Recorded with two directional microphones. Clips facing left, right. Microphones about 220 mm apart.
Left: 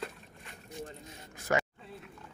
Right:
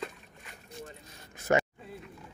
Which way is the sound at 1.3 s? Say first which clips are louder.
Right 4 dB; 25° right (ahead or behind).